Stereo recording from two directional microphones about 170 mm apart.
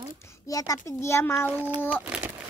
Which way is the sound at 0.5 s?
20° left (ahead or behind).